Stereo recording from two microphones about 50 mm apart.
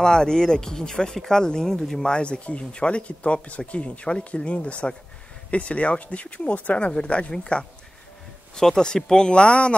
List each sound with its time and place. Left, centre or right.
0.0 s speech: centre
2.0 s speech: centre